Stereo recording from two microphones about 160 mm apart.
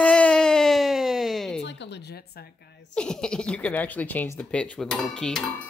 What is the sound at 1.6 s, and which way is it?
Speech, 90° left.